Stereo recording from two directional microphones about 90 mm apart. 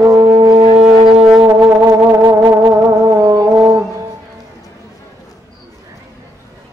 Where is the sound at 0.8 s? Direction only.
5° right (ahead or behind).